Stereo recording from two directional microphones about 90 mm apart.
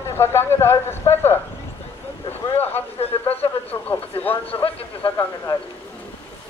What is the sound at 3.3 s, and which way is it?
Speech, 90° left.